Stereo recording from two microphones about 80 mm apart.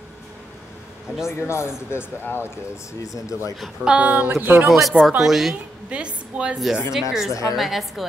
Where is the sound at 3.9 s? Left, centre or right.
Centre.